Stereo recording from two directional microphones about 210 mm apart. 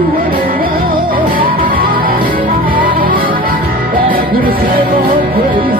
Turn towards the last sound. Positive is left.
turn(degrees=-45)  # may be behind; listen again after turning